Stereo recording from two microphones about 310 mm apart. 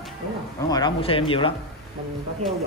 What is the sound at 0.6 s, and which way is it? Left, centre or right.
Speech, centre.